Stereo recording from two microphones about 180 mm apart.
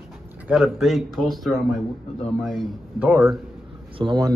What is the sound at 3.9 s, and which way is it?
Speech, 25° right (ahead or behind).